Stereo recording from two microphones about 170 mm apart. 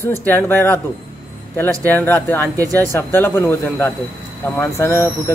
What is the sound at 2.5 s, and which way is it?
Speech, 20° right (ahead or behind).